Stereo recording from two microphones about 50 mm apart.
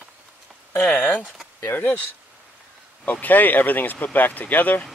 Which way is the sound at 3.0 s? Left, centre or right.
Left.